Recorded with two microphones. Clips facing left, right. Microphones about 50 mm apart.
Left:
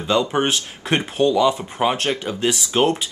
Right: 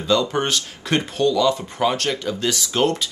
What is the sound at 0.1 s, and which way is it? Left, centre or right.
Speech, left.